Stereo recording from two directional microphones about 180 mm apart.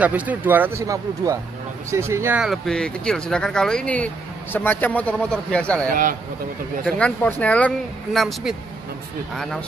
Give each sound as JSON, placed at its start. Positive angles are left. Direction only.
{"t": 0.0, "sound": "speech", "side_deg": -10}
{"t": 5.9, "sound": "a man's voice", "side_deg": -50}
{"t": 7.0, "sound": "speech", "side_deg": 10}